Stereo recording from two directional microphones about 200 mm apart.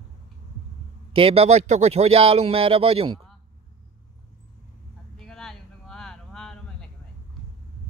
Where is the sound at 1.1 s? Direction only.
30° right (ahead or behind).